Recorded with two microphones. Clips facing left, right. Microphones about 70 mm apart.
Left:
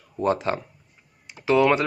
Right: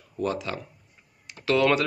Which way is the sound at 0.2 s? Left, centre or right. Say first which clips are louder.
Left 6 dB; left.